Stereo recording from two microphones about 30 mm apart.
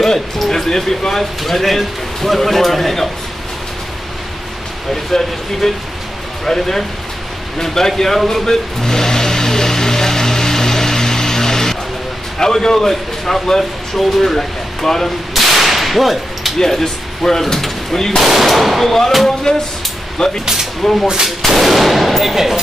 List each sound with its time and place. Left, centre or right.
0.0 s speech: centre
1.4 s a man's voice: centre
5.1 s speech: centre
8.3 s vehicle: centre
12.4 s speech: centre
15.3 s whip: centre
16.5 s speech: centre
18.2 s a man's voice: centre
18.9 s speech: centre
19.5 s speech: left
20.2 s a man's voice: centre